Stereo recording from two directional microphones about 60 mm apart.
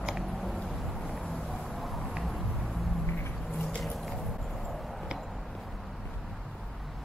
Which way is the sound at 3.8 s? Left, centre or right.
Centre.